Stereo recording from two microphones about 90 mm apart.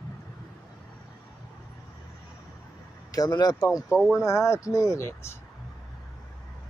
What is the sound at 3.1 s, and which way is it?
Speech, 45° left (ahead or behind).